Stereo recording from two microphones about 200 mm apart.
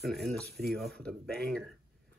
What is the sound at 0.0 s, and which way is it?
Speech, centre (ahead or behind).